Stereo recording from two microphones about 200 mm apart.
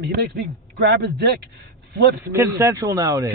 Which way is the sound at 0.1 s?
55° right (ahead or behind).